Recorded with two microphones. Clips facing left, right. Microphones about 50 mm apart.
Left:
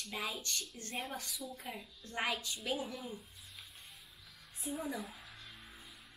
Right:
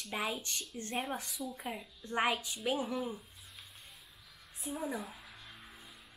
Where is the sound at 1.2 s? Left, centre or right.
Centre.